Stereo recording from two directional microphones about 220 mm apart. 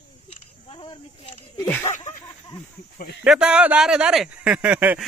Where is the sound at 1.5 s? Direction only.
10° left (ahead or behind).